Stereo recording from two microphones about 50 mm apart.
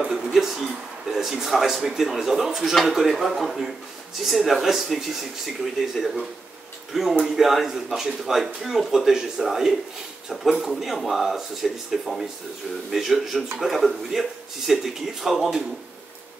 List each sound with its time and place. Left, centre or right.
0.1 s speech: centre